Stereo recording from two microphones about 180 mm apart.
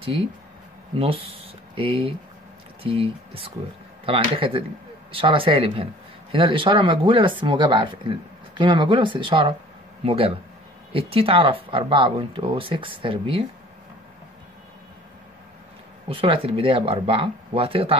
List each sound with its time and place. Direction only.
0.9 s speech: 30° right (ahead or behind)
16.1 s speech: 30° right (ahead or behind)